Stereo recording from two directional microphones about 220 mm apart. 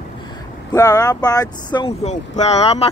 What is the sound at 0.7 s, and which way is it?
Speech, 15° left (ahead or behind).